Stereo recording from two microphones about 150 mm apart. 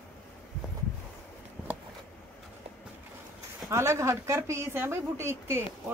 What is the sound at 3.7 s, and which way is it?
Speech, 20° right (ahead or behind).